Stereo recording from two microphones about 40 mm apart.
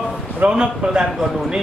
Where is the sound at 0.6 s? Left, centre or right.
Right.